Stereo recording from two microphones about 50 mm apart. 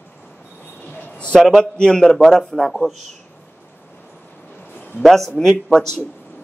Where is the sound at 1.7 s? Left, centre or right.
Centre.